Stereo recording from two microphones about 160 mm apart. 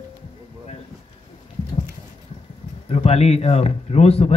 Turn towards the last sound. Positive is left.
turn(degrees=40)  # may be behind; listen again after turning